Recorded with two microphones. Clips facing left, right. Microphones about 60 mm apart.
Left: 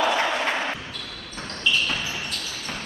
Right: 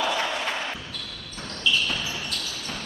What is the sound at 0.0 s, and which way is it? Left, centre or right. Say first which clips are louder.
Basketball bounce: left 4 dB; left.